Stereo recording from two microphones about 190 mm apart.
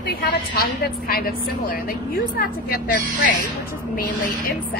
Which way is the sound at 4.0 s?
50° left (ahead or behind).